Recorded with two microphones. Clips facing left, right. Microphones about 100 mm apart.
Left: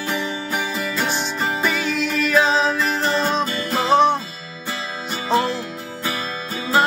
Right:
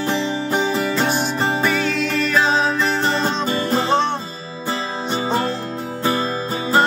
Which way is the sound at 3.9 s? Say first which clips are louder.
Left 6 dB; 10° left (ahead or behind).